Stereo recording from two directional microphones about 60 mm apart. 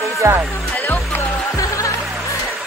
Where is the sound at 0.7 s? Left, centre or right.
Left.